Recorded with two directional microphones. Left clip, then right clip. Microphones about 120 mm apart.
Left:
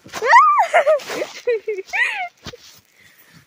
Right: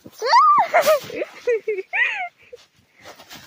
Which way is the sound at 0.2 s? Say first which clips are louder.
Left 2 dB; 25° left (ahead or behind).